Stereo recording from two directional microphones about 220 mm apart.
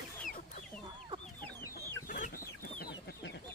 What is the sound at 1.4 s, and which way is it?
Chicken, 10° left (ahead or behind).